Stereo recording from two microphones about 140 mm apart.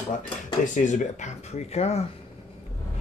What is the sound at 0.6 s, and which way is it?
Speech, 65° left (ahead or behind).